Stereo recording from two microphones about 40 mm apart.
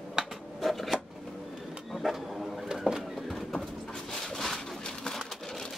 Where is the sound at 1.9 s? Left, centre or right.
Centre.